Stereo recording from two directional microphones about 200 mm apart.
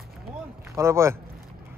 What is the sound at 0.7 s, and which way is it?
Speech, 15° right (ahead or behind).